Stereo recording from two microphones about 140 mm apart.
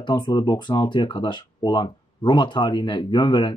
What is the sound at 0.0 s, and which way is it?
Speech, 35° left (ahead or behind).